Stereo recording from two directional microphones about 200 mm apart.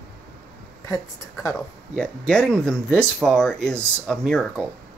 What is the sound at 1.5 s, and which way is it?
Speech, 5° left (ahead or behind).